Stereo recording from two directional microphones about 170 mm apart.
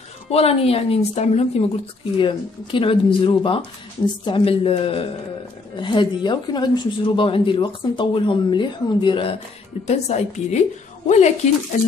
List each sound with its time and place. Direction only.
0.3 s speech: 35° left (ahead or behind)